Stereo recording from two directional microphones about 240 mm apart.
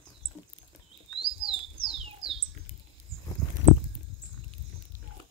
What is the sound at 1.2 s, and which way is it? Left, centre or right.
Bird, right.